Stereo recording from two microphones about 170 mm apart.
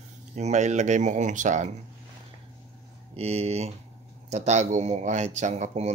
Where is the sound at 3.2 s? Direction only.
35° right (ahead or behind).